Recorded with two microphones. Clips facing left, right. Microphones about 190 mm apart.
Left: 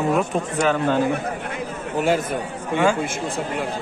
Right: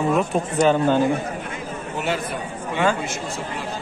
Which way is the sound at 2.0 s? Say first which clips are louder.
Left 5 dB; 45° left (ahead or behind).